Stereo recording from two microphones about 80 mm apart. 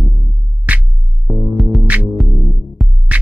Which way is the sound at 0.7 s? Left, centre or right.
Centre.